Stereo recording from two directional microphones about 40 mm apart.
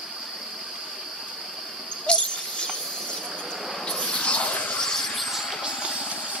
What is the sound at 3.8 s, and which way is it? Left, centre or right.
Mouse, centre.